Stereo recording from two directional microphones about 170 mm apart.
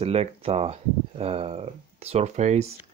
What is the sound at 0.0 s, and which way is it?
Speech, 35° right (ahead or behind).